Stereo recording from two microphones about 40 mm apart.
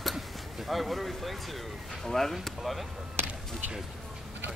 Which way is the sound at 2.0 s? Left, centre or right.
Centre.